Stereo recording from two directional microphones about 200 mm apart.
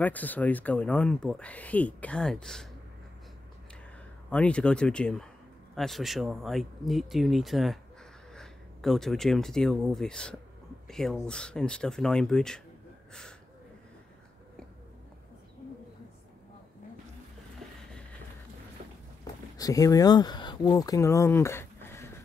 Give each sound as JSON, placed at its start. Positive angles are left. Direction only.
{"t": 0.0, "sound": "speech", "side_deg": 10}
{"t": 4.3, "sound": "speech", "side_deg": 5}
{"t": 19.5, "sound": "speech", "side_deg": 15}